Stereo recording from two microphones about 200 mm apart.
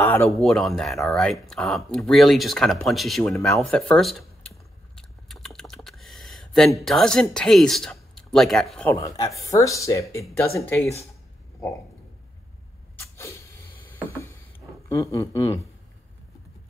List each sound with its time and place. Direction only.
0.0 s speech: 10° left (ahead or behind)
4.9 s typing: centre (ahead or behind)
6.8 s speech: centre (ahead or behind)
8.9 s speech: 15° left (ahead or behind)
13.0 s a sound: 15° left (ahead or behind)
14.9 s speech: 15° left (ahead or behind)